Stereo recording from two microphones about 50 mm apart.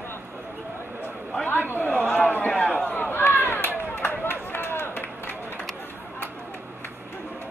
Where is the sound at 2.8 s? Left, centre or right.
Left.